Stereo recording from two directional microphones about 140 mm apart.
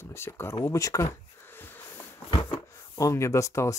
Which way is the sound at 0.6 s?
20° left (ahead or behind).